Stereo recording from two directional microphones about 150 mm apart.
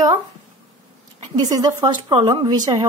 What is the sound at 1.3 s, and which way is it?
Speech, 25° right (ahead or behind).